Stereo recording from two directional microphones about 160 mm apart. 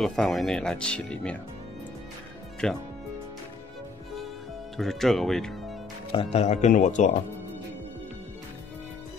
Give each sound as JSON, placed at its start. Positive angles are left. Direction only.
{"t": 0.0, "sound": "speech", "side_deg": 5}
{"t": 2.6, "sound": "speech", "side_deg": 5}
{"t": 4.7, "sound": "speech", "side_deg": 0}
{"t": 6.1, "sound": "speech", "side_deg": 40}